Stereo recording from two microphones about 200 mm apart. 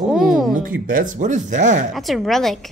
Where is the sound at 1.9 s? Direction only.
Centre (ahead or behind).